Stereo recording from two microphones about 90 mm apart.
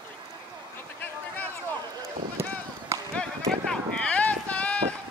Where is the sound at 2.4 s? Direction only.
30° right (ahead or behind).